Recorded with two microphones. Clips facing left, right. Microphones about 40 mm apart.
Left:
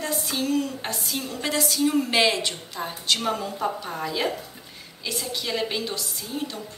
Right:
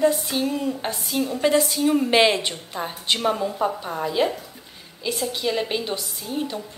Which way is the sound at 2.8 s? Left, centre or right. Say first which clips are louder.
Right 2 dB; centre.